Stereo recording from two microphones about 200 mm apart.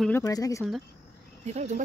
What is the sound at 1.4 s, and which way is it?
Speech, 35° right (ahead or behind).